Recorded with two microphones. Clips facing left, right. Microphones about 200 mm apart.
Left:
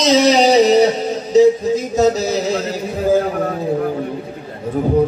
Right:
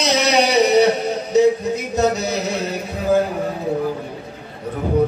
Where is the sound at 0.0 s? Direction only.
60° right (ahead or behind).